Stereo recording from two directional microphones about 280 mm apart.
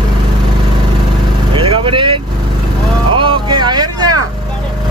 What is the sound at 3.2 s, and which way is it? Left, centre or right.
Speech, centre.